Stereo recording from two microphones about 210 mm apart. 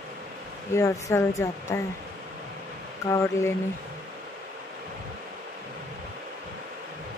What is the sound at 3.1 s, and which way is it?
Speech, 10° left (ahead or behind).